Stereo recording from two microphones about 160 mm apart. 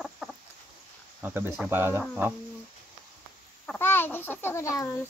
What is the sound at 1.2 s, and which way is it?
Speech, 10° right (ahead or behind).